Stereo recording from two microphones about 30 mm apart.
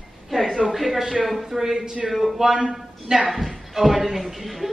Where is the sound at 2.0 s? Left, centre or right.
Centre.